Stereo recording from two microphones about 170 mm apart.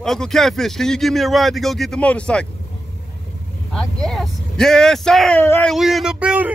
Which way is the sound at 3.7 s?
5° left (ahead or behind).